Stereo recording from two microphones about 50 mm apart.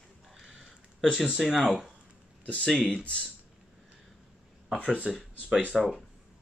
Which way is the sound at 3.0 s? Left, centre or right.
Left.